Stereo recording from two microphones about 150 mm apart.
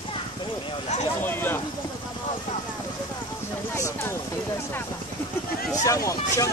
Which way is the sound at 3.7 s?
20° left (ahead or behind).